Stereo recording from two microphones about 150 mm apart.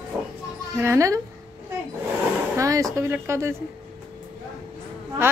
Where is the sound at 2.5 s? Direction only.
20° right (ahead or behind).